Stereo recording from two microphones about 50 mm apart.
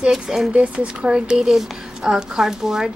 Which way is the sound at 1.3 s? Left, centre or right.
Centre.